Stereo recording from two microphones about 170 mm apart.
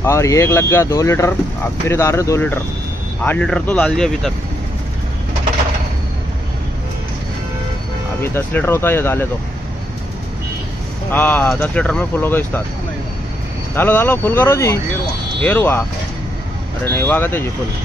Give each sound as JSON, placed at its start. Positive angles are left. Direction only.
{"t": 0.0, "sound": "speech", "side_deg": 15}
{"t": 8.2, "sound": "speech", "side_deg": 10}
{"t": 11.1, "sound": "speech", "side_deg": 10}
{"t": 13.7, "sound": "speech", "side_deg": 10}
{"t": 16.8, "sound": "speech", "side_deg": 10}